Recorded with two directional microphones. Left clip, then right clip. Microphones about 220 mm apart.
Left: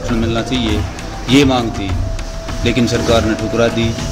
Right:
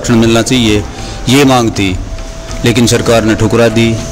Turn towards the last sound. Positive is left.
turn(degrees=-50)  # may be behind; listen again after turning